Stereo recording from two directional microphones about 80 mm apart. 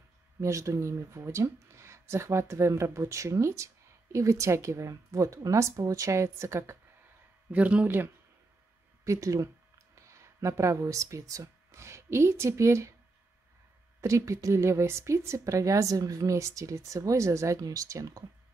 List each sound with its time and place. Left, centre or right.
0.4 s speech: right
7.5 s speech: centre
9.0 s speech: right
14.0 s speech: right